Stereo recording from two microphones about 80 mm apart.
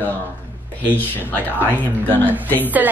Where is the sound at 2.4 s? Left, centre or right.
Left.